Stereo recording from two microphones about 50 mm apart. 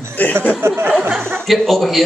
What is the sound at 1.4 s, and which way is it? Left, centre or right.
Speech, centre.